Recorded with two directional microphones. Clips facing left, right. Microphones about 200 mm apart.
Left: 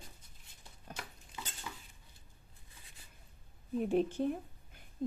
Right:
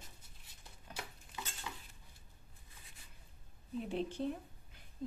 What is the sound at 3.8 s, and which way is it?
Speech, 50° left (ahead or behind).